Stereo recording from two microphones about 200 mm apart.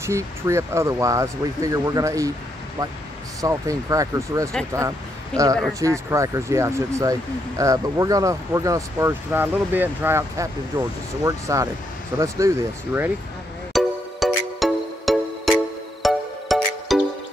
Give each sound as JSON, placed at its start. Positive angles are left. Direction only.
{"t": 0.0, "sound": "speech", "side_deg": -15}
{"t": 3.3, "sound": "speech", "side_deg": -15}
{"t": 13.7, "sound": "music", "side_deg": 0}